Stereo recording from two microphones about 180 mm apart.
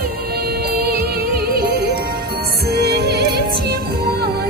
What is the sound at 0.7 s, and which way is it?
Music, 60° right (ahead or behind).